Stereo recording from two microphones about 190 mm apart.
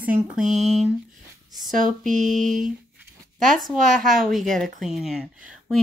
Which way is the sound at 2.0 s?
40° right (ahead or behind).